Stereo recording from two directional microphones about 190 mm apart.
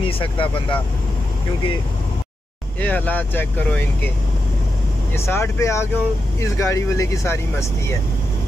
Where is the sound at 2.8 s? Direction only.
10° left (ahead or behind).